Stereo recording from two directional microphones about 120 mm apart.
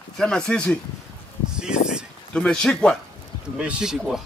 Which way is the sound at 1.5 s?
5° right (ahead or behind).